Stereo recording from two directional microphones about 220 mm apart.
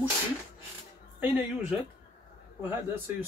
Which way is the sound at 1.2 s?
10° right (ahead or behind).